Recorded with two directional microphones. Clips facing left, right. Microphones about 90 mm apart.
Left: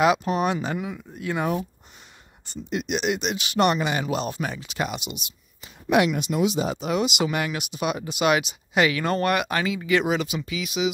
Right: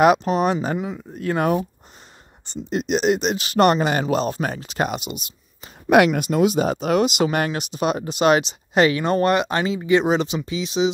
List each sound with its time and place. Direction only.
0.2 s speech: 30° right (ahead or behind)
0.7 s speech: 25° right (ahead or behind)
1.1 s speech: 40° right (ahead or behind)
2.4 s speech: 30° right (ahead or behind)
5.9 s speech: 55° right (ahead or behind); by 10.9 s 30° right (ahead or behind)